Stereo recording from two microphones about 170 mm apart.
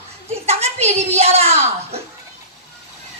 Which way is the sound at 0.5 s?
40° right (ahead or behind).